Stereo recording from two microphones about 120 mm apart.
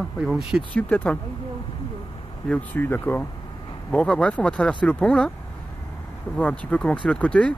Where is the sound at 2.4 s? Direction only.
15° left (ahead or behind).